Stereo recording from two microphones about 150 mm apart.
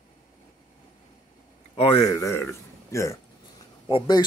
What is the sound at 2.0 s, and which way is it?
Speech, 20° left (ahead or behind).